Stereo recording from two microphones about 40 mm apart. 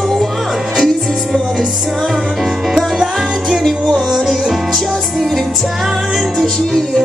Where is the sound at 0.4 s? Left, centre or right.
Centre.